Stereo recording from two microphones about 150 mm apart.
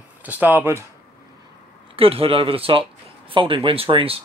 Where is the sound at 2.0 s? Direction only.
40° right (ahead or behind).